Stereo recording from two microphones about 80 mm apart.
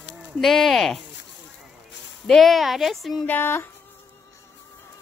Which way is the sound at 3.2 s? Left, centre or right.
Left.